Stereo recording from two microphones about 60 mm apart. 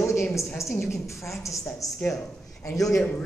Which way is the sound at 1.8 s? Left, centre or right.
Left.